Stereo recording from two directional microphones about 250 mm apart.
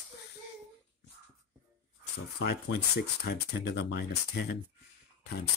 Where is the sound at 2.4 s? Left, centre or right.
Left.